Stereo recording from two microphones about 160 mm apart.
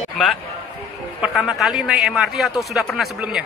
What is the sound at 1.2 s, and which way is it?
Speech, centre (ahead or behind).